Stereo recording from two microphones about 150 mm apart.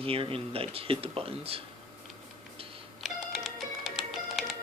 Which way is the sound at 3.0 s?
Centre (ahead or behind).